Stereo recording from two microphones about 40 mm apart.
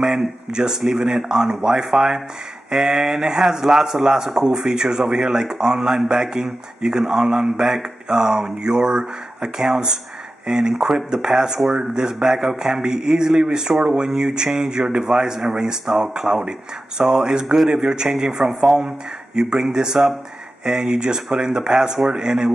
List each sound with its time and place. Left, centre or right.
0.5 s speech: centre